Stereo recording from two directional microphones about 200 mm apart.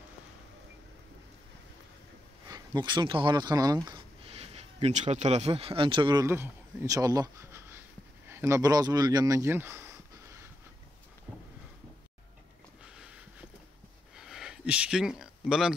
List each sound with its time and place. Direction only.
2.4 s speech: 20° right (ahead or behind)
12.8 s sniff: 5° right (ahead or behind)
14.1 s a sound: 5° right (ahead or behind)